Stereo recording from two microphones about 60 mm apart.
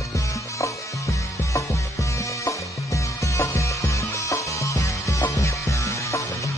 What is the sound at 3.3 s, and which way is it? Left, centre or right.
Music, left.